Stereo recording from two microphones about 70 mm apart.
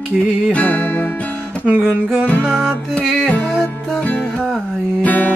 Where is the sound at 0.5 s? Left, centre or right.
Left.